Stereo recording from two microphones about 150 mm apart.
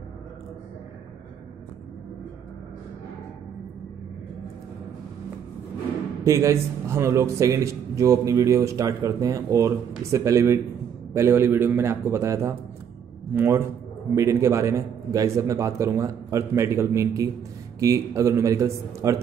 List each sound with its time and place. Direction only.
6.2 s a man's voice: 20° right (ahead or behind)